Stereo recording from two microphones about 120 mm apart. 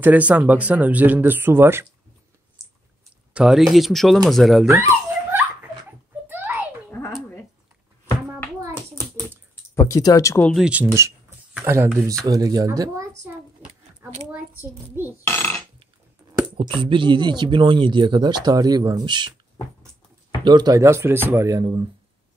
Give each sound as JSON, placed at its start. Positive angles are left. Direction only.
{"t": 0.0, "sound": "speech", "side_deg": -10}
{"t": 3.3, "sound": "speech", "side_deg": -5}
{"t": 4.6, "sound": "dog", "side_deg": -20}
{"t": 5.9, "sound": "a sound", "side_deg": -15}
{"t": 9.8, "sound": "speech", "side_deg": 30}
{"t": 10.5, "sound": "speech", "side_deg": -10}
{"t": 13.6, "sound": "a sound", "side_deg": -10}
{"t": 14.3, "sound": "speech", "side_deg": -15}
{"t": 15.2, "sound": "burping", "side_deg": 20}
{"t": 16.5, "sound": "speech", "side_deg": -45}
{"t": 20.4, "sound": "speech", "side_deg": -35}